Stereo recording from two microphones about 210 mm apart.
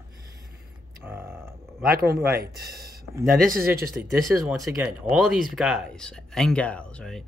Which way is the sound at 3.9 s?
5° right (ahead or behind).